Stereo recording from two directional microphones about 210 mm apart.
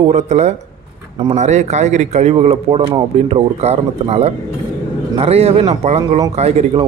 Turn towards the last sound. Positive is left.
turn(degrees=-30)  # may be behind; listen again after turning